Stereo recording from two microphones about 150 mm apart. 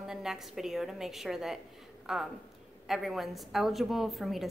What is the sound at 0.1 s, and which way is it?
A woman's voice, 5° right (ahead or behind).